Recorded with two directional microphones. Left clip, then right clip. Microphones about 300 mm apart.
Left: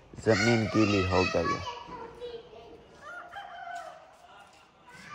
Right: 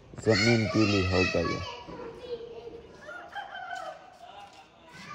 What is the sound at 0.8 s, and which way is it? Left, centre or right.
Speech, centre.